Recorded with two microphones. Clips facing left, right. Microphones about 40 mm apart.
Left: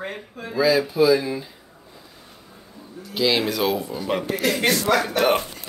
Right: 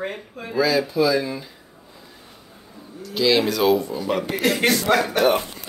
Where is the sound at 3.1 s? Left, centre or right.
Centre.